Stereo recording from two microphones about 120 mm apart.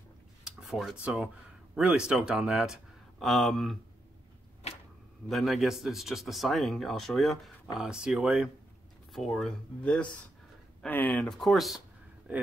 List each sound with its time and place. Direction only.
0.4 s speech: 5° right (ahead or behind)
4.6 s a sound: 60° left (ahead or behind)
5.3 s speech: centre (ahead or behind)
12.3 s speech: 10° right (ahead or behind)